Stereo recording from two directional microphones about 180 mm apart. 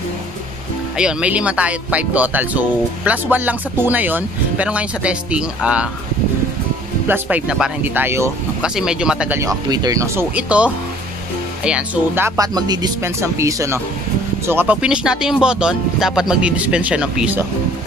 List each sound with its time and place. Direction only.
0.9 s speech: 5° right (ahead or behind)
7.1 s speech: 10° right (ahead or behind)
9.4 s speech: 20° right (ahead or behind)
10.3 s speech: 5° right (ahead or behind)
12.4 s speech: 20° right (ahead or behind); by 17.4 s 5° right (ahead or behind)